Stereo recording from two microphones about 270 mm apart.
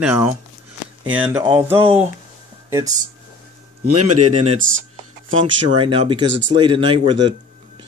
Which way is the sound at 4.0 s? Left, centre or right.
Right.